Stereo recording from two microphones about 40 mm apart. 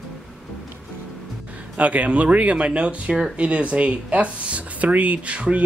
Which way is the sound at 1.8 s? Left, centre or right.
Right.